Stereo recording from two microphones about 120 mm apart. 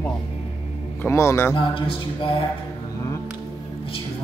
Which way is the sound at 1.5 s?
45° left (ahead or behind).